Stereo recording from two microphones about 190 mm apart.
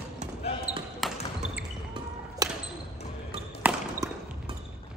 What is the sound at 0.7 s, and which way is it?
Basketball bounce, 5° right (ahead or behind).